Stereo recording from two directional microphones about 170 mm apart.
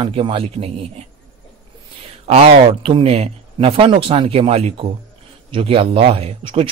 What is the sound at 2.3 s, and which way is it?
Speech, 35° right (ahead or behind).